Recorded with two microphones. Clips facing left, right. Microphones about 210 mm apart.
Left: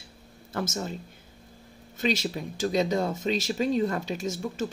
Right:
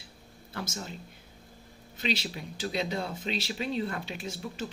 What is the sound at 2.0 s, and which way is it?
Speech, 45° left (ahead or behind).